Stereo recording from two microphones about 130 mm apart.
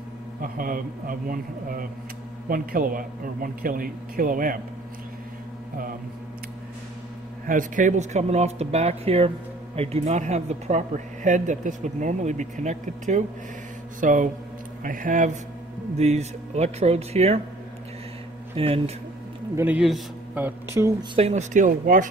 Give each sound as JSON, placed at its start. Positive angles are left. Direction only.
{"t": 0.4, "sound": "a man's voice", "side_deg": -90}
{"t": 7.4, "sound": "speech", "side_deg": -90}
{"t": 11.2, "sound": "speech", "side_deg": -75}
{"t": 14.0, "sound": "a man's voice", "side_deg": -90}
{"t": 16.0, "sound": "speech", "side_deg": -55}
{"t": 18.6, "sound": "speech", "side_deg": -45}
{"t": 19.5, "sound": "speech", "side_deg": -15}
{"t": 21.1, "sound": "speech", "side_deg": -55}